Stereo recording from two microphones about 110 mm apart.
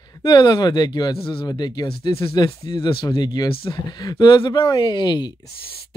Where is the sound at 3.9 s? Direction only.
40° left (ahead or behind).